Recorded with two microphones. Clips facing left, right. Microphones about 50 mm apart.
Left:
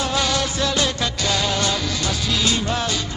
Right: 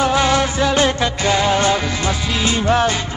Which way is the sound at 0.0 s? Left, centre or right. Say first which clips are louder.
Right 6 dB; right.